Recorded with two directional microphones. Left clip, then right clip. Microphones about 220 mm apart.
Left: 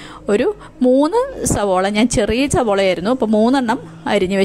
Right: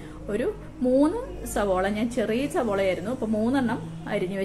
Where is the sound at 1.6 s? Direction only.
45° left (ahead or behind).